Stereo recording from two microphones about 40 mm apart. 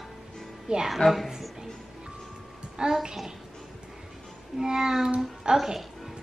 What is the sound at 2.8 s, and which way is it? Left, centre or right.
Speech, centre.